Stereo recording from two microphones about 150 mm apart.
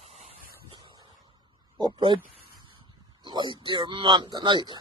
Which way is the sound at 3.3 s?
30° right (ahead or behind).